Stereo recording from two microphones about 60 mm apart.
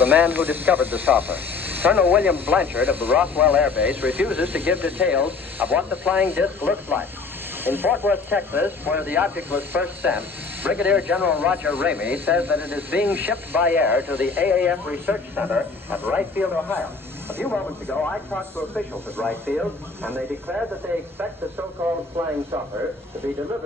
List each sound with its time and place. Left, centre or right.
0.0 s speech: right
17.5 s speech: centre
20.0 s speech: right